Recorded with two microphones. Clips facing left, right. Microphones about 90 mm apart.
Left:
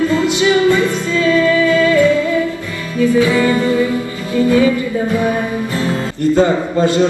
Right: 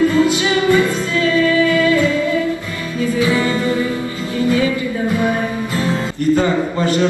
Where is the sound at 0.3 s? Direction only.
20° left (ahead or behind).